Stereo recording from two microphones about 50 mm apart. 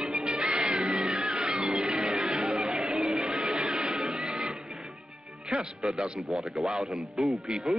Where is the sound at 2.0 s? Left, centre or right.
Centre.